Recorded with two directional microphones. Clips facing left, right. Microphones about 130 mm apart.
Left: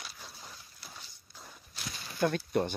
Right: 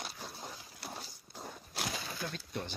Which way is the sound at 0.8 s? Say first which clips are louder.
Right 10 dB; 70° right (ahead or behind).